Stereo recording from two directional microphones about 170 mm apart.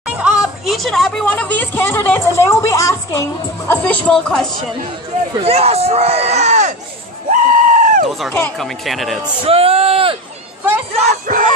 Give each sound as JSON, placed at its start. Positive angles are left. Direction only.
{"t": 0.0, "sound": "speech", "side_deg": -5}
{"t": 5.4, "sound": "speech", "side_deg": -35}
{"t": 7.2, "sound": "a sound", "side_deg": -55}
{"t": 8.3, "sound": "speech", "side_deg": 10}
{"t": 9.2, "sound": "speech", "side_deg": -35}
{"t": 11.0, "sound": "speech", "side_deg": -45}